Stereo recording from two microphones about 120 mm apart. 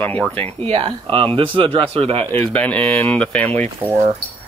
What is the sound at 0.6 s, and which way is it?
Speech, 45° right (ahead or behind).